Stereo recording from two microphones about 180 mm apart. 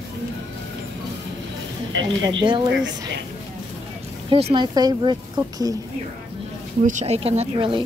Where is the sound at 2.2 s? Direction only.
25° right (ahead or behind).